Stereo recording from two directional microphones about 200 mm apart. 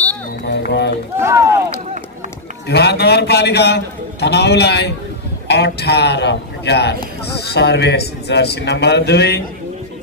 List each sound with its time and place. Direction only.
0.5 s a sound: 55° left (ahead or behind)
1.2 s run: 15° right (ahead or behind)
2.7 s a man's voice: 55° left (ahead or behind)